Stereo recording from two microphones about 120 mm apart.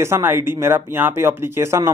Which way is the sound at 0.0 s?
20° right (ahead or behind).